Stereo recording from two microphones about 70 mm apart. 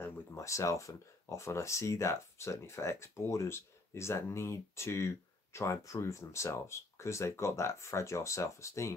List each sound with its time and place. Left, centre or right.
0.0 s speech: left